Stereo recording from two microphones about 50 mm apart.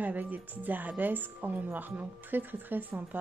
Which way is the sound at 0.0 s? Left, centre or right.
Right.